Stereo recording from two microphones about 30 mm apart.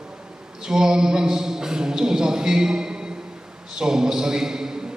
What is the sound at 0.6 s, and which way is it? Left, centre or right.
A man's voice, right.